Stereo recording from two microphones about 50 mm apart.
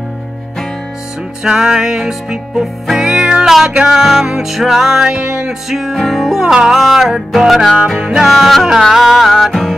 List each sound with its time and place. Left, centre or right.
1.4 s music: centre
5.0 s music: centre
5.7 s music: centre